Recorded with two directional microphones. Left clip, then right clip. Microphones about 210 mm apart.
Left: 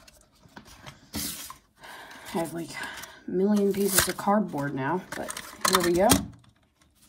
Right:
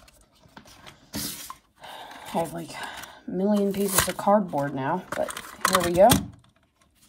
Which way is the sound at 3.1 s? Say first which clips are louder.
Left 1 dB; 15° right (ahead or behind).